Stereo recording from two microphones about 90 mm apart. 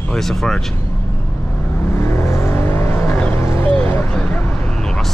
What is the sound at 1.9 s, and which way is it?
Vehicle, 30° left (ahead or behind).